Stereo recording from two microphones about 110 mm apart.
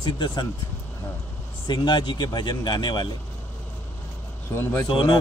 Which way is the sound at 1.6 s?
40° left (ahead or behind).